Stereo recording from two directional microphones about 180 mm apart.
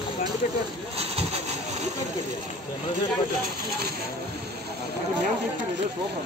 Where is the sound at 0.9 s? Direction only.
35° right (ahead or behind).